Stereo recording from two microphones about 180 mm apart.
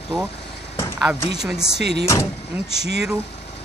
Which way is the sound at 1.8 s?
70° right (ahead or behind).